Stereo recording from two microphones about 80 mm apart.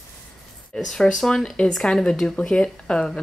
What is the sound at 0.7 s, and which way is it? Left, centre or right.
Speech, centre.